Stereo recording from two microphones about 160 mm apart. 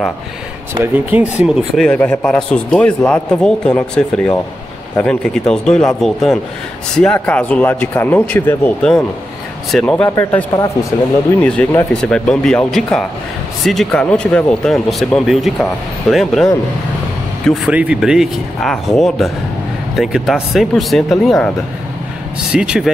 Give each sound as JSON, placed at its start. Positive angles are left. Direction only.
{"t": 0.7, "sound": "speech", "side_deg": -10}
{"t": 2.0, "sound": "speech", "side_deg": 5}
{"t": 11.4, "sound": "speech", "side_deg": 5}
{"t": 17.6, "sound": "speech", "side_deg": -10}
{"t": 22.5, "sound": "speech", "side_deg": -5}